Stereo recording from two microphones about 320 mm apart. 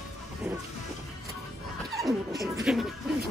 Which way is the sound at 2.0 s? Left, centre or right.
Centre.